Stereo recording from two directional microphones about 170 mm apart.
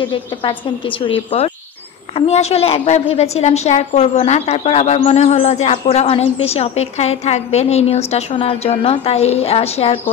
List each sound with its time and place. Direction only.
0.1 s a woman's voice: 30° left (ahead or behind)